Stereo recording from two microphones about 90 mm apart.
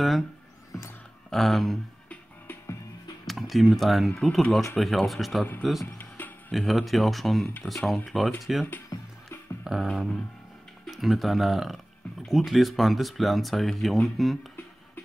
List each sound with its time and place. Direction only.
1.3 s speech: centre (ahead or behind)
3.3 s speech: centre (ahead or behind)
5.9 s music: 25° left (ahead or behind)
6.7 s speech: centre (ahead or behind)
9.7 s speech: 5° right (ahead or behind)